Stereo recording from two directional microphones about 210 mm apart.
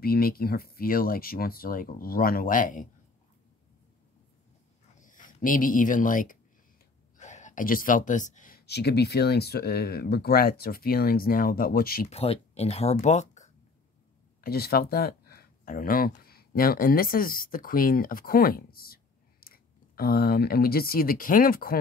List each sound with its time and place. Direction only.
0.0 s speech: 45° left (ahead or behind)
5.0 s speech: 40° left (ahead or behind)
12.1 s speech: 30° left (ahead or behind)
14.4 s speech: 45° left (ahead or behind)